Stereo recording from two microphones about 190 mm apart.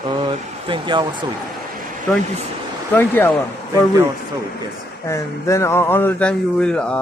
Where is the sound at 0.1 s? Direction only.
25° right (ahead or behind).